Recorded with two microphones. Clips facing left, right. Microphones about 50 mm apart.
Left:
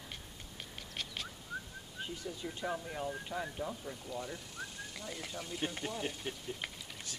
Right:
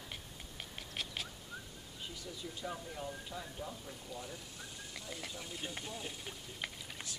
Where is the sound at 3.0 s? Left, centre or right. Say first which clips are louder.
Left 5 dB; left.